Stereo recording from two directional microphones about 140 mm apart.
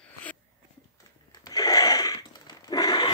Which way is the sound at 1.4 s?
25° left (ahead or behind).